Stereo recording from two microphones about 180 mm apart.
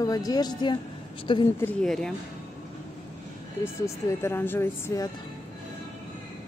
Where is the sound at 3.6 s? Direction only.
15° left (ahead or behind).